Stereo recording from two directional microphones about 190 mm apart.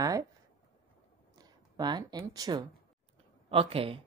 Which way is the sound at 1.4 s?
20° right (ahead or behind).